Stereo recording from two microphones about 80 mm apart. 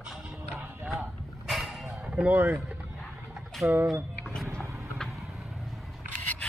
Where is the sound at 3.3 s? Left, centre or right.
Centre.